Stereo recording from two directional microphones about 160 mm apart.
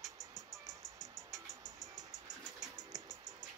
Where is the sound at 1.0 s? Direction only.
20° right (ahead or behind).